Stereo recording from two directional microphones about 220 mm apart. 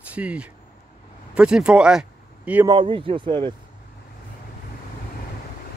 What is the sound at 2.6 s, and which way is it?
Speech, 20° right (ahead or behind).